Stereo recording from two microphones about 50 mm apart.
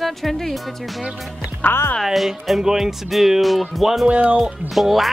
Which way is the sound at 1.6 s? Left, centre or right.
Left.